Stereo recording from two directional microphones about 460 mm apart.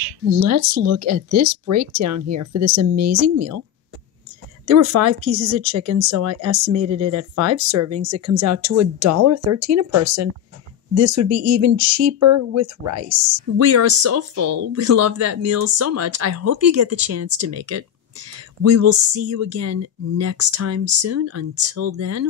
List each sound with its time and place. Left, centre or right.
0.0 s speech: right
4.6 s speech: right